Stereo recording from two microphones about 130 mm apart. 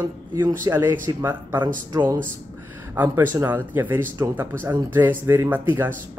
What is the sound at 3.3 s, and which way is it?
Speech, 15° right (ahead or behind).